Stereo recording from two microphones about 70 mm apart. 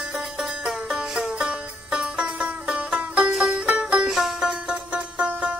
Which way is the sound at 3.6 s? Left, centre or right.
Centre.